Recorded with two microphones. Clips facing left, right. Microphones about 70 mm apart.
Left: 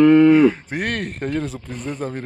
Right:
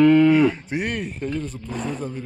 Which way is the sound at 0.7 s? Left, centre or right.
Left.